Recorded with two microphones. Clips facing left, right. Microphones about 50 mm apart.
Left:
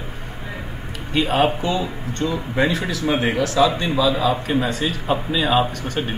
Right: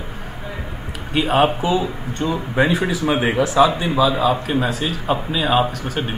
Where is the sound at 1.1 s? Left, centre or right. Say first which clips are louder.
Right 2 dB; centre.